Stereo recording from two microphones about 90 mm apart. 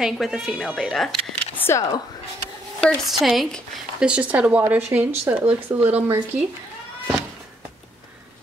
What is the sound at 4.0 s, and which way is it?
Speech, 15° right (ahead or behind).